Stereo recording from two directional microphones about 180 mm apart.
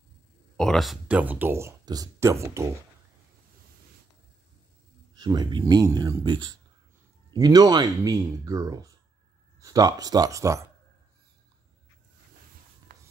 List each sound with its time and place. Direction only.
0.6 s speech: centre (ahead or behind); by 2.7 s 15° right (ahead or behind)
5.1 s speech: 20° right (ahead or behind)